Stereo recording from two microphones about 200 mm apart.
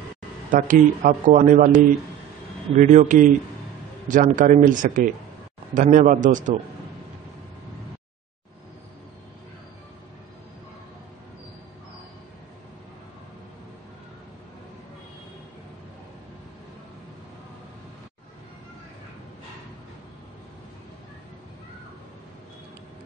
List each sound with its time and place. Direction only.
0.5 s speech: 40° right (ahead or behind)
2.7 s speech: 40° right (ahead or behind)